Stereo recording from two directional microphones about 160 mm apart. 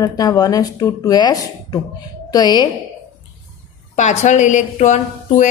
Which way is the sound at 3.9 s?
45° left (ahead or behind).